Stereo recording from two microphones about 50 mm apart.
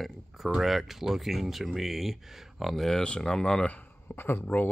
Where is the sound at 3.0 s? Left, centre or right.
Centre.